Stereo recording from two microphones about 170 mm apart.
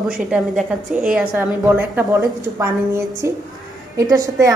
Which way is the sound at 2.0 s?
15° right (ahead or behind).